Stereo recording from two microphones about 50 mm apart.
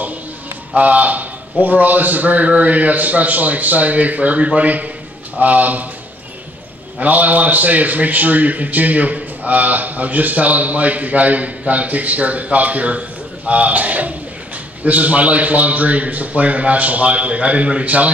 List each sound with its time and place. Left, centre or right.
0.7 s a man's voice: right
7.0 s a man's voice: right